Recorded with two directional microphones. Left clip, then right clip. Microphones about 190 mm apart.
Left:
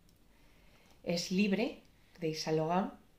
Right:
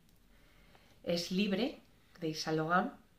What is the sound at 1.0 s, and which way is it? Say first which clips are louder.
Speech: left 1 dB; 10° left (ahead or behind).